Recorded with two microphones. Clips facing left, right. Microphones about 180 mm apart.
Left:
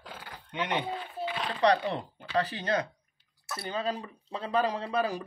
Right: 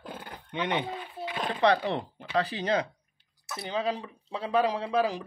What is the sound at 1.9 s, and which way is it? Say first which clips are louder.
Speech: right 2 dB; 20° right (ahead or behind).